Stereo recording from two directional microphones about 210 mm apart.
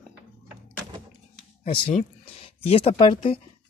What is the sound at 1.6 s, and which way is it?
Speech, 30° left (ahead or behind).